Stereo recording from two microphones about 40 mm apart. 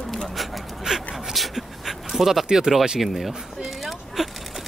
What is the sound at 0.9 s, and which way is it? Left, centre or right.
Speech, centre.